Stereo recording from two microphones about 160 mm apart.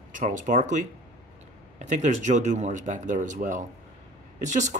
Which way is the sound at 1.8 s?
45° right (ahead or behind).